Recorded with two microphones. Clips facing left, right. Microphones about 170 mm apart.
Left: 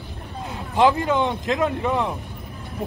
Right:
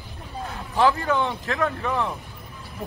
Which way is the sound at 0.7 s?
20° left (ahead or behind).